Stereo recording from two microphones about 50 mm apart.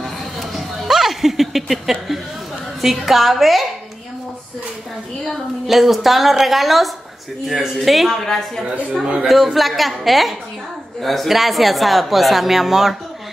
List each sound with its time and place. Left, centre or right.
0.4 s a sound: centre
0.8 s a woman's voice: centre
5.2 s a woman's voice: centre
9.0 s a woman's voice: centre
9.3 s a woman's voice: centre